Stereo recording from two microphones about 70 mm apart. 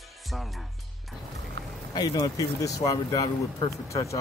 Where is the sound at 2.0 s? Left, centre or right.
Left.